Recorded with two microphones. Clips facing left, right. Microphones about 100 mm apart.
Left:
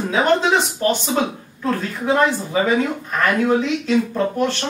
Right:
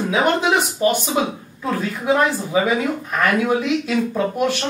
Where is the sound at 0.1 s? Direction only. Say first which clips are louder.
Left 2 dB; 10° right (ahead or behind).